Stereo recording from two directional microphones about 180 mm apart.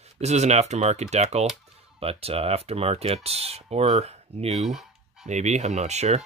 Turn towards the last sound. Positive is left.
turn(degrees=-40)  # may be behind; listen again after turning